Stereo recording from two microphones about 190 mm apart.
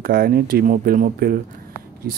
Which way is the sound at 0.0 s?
50° right (ahead or behind).